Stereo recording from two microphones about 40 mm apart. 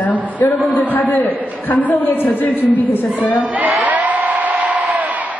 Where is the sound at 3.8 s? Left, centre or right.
Right.